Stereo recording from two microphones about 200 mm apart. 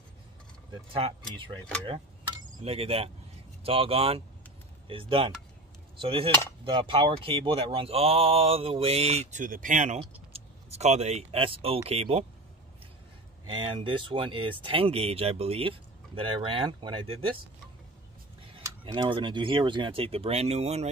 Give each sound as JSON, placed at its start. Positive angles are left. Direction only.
{"t": 0.9, "sound": "speech", "side_deg": -25}
{"t": 2.6, "sound": "speech", "side_deg": -30}
{"t": 13.5, "sound": "speech", "side_deg": -25}
{"t": 18.6, "sound": "speech", "side_deg": -25}